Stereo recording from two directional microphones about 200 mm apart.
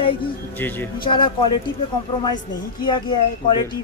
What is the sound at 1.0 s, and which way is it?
Speech, 25° left (ahead or behind).